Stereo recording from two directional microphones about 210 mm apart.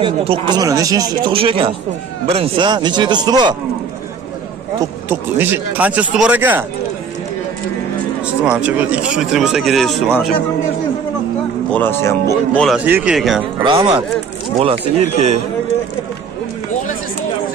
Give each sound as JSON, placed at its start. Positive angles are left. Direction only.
{"t": 0.0, "sound": "speech", "side_deg": -25}
{"t": 4.7, "sound": "speech", "side_deg": -10}
{"t": 8.3, "sound": "speech", "side_deg": -5}
{"t": 11.7, "sound": "speech", "side_deg": 10}
{"t": 12.6, "sound": "speech", "side_deg": -5}
{"t": 13.6, "sound": "speech", "side_deg": -20}